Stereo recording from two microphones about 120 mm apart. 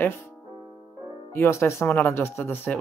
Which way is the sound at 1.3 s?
20° left (ahead or behind).